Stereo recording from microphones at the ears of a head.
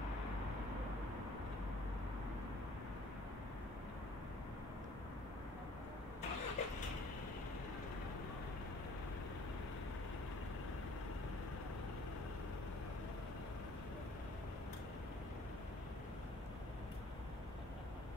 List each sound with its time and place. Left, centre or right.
6.2 s vehicle: left